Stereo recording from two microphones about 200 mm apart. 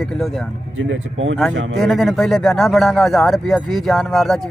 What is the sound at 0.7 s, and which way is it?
Speech, 75° right (ahead or behind).